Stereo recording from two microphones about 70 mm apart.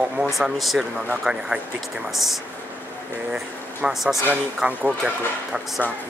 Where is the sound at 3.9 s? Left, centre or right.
Centre.